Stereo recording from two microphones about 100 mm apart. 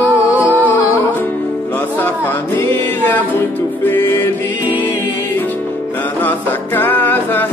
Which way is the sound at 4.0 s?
30° left (ahead or behind).